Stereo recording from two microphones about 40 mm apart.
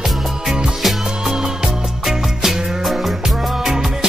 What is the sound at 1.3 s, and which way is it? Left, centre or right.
Music, centre.